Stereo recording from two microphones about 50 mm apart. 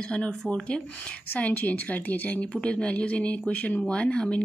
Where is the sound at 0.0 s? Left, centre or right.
Left.